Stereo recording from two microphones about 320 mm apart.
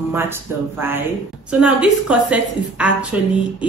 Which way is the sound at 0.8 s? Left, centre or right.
Centre.